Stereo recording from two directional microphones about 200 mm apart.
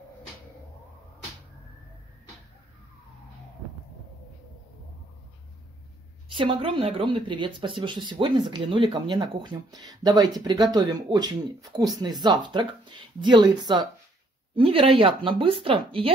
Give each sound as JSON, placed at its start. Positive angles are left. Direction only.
{"t": 6.2, "sound": "speech", "side_deg": -25}